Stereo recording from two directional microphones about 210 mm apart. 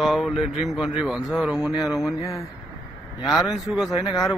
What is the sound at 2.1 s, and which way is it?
Speech, 15° left (ahead or behind).